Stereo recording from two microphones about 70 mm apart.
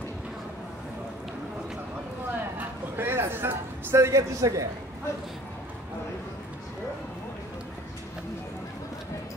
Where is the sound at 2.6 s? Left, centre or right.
Right.